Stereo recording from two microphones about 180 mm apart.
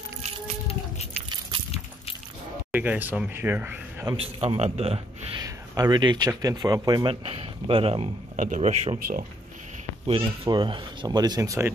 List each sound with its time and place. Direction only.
2.7 s speech: 10° right (ahead or behind)
4.2 s a man's voice: 35° right (ahead or behind)
5.4 s a man's voice: 20° right (ahead or behind)
8.4 s speech: 40° right (ahead or behind)
10.0 s speech: 30° right (ahead or behind)